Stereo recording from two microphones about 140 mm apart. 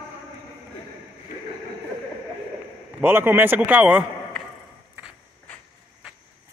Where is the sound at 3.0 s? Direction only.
15° right (ahead or behind).